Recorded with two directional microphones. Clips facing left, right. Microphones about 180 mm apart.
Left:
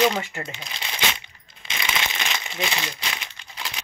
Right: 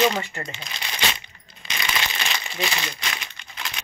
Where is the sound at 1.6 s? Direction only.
25° left (ahead or behind).